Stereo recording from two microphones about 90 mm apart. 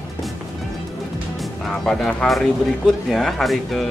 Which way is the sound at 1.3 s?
Centre (ahead or behind).